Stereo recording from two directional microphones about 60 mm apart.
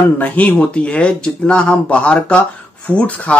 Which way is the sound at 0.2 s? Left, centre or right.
Left.